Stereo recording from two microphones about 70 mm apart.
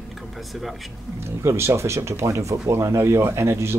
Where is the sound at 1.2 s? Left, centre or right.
Right.